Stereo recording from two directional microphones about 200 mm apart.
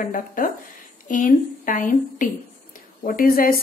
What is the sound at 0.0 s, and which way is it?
A woman's voice, 45° left (ahead or behind).